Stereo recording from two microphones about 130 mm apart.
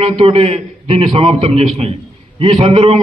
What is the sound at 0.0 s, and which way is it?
A man's voice, 50° right (ahead or behind).